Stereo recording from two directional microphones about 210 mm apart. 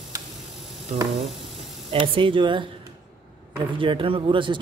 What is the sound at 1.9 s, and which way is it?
Speech, 25° right (ahead or behind).